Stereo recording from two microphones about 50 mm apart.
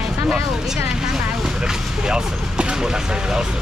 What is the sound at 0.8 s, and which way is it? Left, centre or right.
Speech, centre.